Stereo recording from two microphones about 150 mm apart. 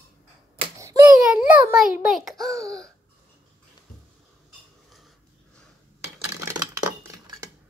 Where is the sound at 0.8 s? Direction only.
20° right (ahead or behind).